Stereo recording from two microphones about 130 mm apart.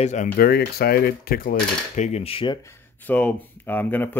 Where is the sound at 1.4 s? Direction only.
75° left (ahead or behind); by 2.6 s 40° left (ahead or behind).